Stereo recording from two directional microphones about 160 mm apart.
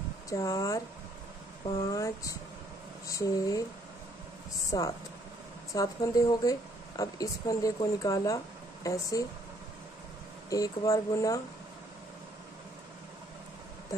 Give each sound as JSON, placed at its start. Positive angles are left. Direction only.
{"t": 0.3, "sound": "speech", "side_deg": 20}
{"t": 1.9, "sound": "speech", "side_deg": 20}
{"t": 4.6, "sound": "speech", "side_deg": 20}
{"t": 10.5, "sound": "speech", "side_deg": 20}